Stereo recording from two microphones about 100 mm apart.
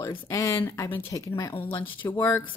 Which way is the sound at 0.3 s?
35° left (ahead or behind).